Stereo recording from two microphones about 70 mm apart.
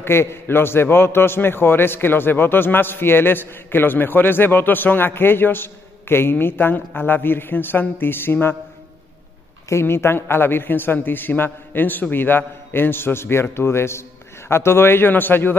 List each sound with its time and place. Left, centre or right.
0.0 s a man's voice: left
9.7 s a man's voice: left